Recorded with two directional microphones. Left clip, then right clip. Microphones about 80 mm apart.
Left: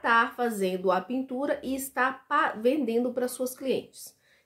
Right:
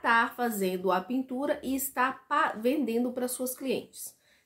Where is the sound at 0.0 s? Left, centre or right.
Left.